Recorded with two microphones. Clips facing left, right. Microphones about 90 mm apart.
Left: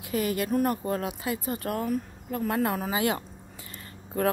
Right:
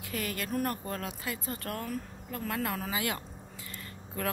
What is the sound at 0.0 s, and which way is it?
Speech, 20° left (ahead or behind).